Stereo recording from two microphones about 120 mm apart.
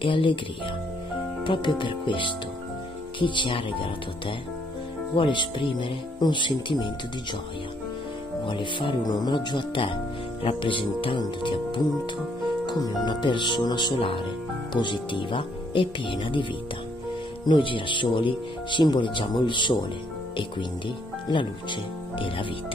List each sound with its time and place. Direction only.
0.0 s speech: 45° left (ahead or behind)
1.4 s speech: 40° left (ahead or behind)
8.5 s speech: 45° left (ahead or behind)
13.9 s speech: 50° left (ahead or behind)
17.5 s speech: 45° left (ahead or behind)
21.3 s speech: 45° left (ahead or behind)